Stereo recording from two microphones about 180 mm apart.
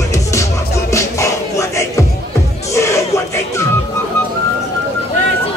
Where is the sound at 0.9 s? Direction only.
15° left (ahead or behind).